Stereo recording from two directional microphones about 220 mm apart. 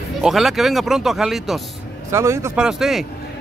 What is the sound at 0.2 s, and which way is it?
A man's voice, centre (ahead or behind).